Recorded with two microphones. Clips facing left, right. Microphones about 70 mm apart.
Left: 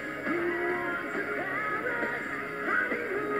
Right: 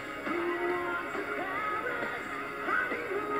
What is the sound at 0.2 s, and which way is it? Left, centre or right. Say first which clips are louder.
Music: left 2 dB; left.